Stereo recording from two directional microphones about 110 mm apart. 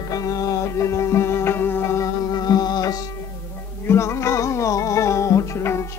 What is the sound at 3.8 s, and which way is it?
Music, 25° left (ahead or behind).